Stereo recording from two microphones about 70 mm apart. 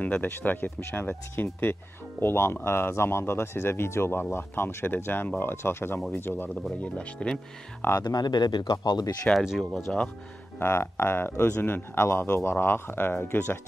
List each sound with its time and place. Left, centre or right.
0.0 s speech: left
6.8 s speech: centre
8.0 s speech: left
9.4 s speech: centre
10.6 s speech: left